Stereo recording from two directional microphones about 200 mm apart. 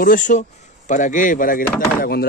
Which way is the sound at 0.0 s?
40° left (ahead or behind).